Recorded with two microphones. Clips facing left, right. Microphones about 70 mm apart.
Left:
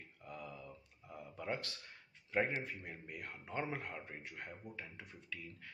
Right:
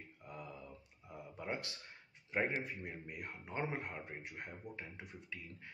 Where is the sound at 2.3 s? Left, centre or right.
Centre.